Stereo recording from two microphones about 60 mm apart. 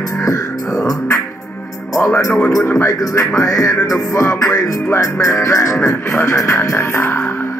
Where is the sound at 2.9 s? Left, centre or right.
Left.